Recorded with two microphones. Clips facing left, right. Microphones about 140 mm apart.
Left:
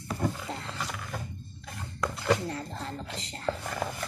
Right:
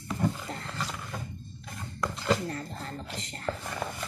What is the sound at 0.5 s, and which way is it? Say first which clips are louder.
Roaring cats: left 1 dB; 20° left (ahead or behind).